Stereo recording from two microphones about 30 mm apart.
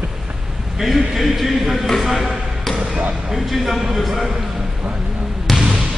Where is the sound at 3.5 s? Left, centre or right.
Centre.